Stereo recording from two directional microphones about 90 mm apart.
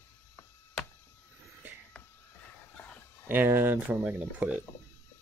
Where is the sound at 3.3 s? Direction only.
20° right (ahead or behind).